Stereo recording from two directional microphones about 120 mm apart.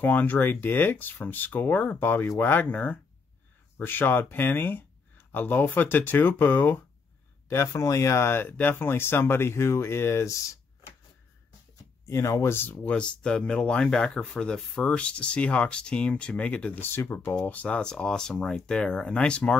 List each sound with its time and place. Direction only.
0.0 s speech: 15° left (ahead or behind)
12.1 s speech: 25° left (ahead or behind); by 19.5 s 10° left (ahead or behind)